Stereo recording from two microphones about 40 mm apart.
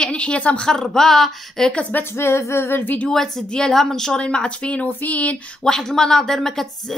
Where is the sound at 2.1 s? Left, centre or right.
Left.